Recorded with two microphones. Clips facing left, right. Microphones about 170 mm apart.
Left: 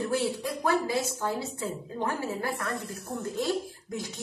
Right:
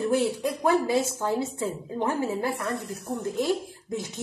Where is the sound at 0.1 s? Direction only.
20° right (ahead or behind).